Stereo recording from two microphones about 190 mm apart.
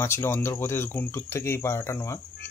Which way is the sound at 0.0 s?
15° left (ahead or behind).